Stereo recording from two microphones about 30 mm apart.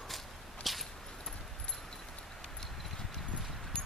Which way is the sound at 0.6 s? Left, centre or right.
Centre.